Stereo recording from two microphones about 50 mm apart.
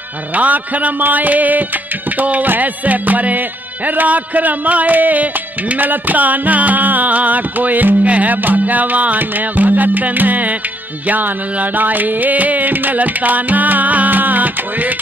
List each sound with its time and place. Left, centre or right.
0.3 s music: right